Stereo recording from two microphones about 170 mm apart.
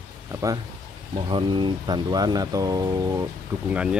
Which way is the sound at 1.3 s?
25° right (ahead or behind).